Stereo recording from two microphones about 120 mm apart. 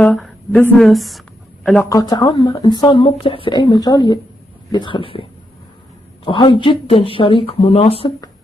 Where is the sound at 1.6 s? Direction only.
10° left (ahead or behind).